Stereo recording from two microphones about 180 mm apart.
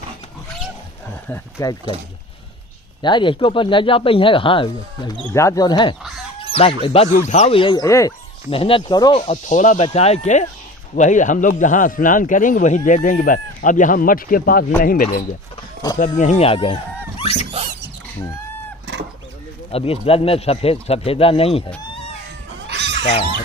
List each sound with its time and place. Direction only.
1.3 s speech: 20° left (ahead or behind)
3.0 s speech: 25° left (ahead or behind)
5.3 s speech: 15° left (ahead or behind)
8.5 s speech: 30° left (ahead or behind)
19.7 s speech: 30° left (ahead or behind)
22.7 s a sound: 70° right (ahead or behind)